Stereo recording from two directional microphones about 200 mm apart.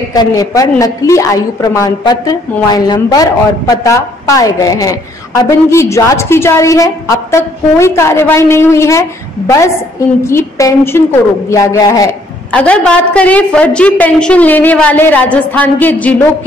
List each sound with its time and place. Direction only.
0.1 s a woman's voice: 20° left (ahead or behind)
10.2 s a woman's voice: 15° left (ahead or behind)
12.5 s a woman's voice: 5° left (ahead or behind)